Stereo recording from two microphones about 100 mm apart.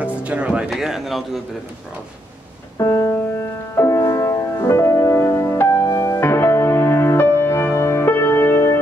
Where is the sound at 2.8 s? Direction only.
30° left (ahead or behind).